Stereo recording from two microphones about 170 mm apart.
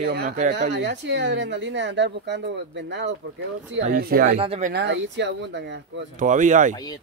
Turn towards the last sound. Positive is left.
turn(degrees=-50)  # may be behind; listen again after turning